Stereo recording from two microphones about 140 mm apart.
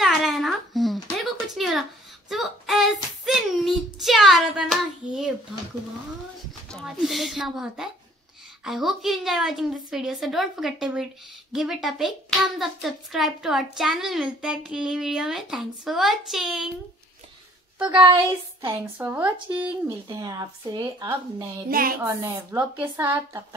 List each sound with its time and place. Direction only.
0.0 s babbling: centre (ahead or behind)
1.1 s a sound: centre (ahead or behind)
6.7 s a child's voice: centre (ahead or behind)
17.7 s speech: 10° right (ahead or behind)
18.1 s speech: 25° right (ahead or behind)
20.1 s speech: 25° right (ahead or behind)
21.6 s a woman's voice: 90° right
22.0 s speech: 20° right (ahead or behind)